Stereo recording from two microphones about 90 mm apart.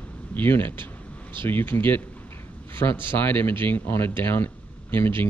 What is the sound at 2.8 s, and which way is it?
Speech, 65° left (ahead or behind).